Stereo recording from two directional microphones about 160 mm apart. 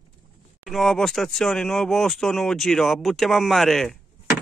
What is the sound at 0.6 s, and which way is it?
Speech, centre (ahead or behind).